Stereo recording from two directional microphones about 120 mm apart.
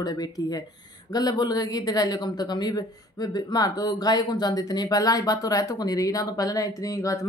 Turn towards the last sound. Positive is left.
turn(degrees=30)  # may be behind; listen again after turning